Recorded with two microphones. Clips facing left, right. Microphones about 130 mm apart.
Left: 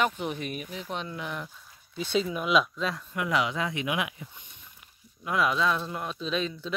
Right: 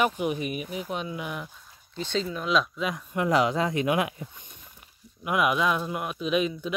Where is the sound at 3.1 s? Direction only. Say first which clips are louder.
Right 6 dB; 35° right (ahead or behind).